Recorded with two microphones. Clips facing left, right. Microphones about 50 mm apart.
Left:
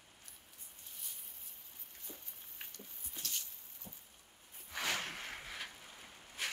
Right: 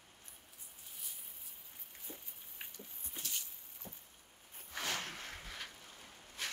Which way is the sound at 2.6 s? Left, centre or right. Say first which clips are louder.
Right 1 dB; centre.